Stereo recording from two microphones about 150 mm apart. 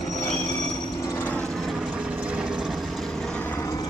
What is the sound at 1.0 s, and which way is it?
Vehicle, 15° left (ahead or behind).